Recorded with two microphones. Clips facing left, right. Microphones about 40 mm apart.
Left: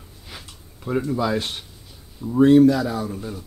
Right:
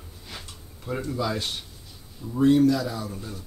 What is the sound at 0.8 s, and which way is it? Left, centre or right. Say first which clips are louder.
Speech: left 6 dB; centre.